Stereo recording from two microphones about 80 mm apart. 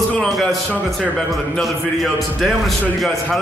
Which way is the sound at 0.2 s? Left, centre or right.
Centre.